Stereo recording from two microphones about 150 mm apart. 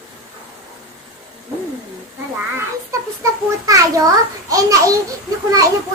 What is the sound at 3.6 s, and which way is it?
A child's voice, 25° right (ahead or behind).